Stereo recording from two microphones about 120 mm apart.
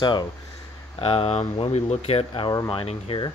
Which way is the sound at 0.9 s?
50° left (ahead or behind).